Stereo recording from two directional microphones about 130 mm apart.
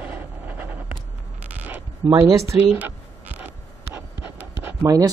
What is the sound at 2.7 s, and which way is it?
Writing, 15° right (ahead or behind).